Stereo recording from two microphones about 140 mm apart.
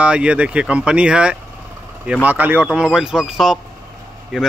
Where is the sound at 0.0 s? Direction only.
10° right (ahead or behind).